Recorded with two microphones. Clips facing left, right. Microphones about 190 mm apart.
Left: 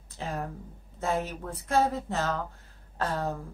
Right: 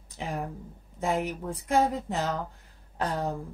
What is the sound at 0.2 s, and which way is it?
A woman's voice, 15° right (ahead or behind).